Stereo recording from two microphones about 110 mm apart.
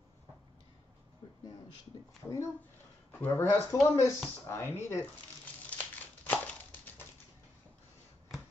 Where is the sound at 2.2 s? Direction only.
10° left (ahead or behind).